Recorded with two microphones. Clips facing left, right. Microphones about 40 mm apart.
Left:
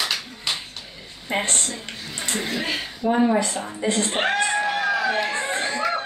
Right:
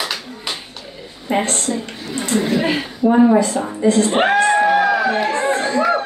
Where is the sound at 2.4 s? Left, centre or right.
Centre.